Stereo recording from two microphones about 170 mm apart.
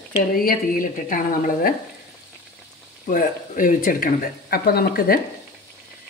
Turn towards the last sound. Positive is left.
turn(degrees=65)  # may be behind; listen again after turning